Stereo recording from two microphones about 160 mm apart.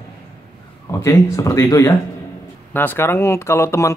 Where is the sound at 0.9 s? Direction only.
20° left (ahead or behind).